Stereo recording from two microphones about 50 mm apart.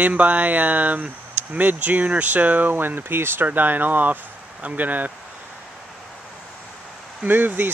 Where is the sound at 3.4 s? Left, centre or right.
Right.